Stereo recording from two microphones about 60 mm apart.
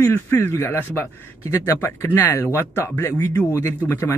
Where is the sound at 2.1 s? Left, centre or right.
Left.